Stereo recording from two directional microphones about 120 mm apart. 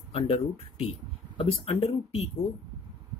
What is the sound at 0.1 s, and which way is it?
Speech, 50° left (ahead or behind).